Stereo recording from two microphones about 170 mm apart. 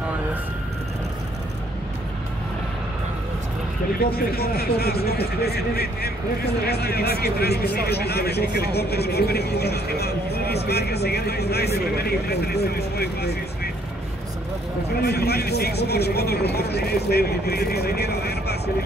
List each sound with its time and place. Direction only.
4.0 s speech: 65° left (ahead or behind)
15.0 s speech: 70° left (ahead or behind)